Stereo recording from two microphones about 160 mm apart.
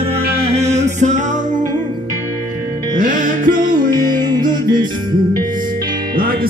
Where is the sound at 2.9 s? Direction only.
55° right (ahead or behind).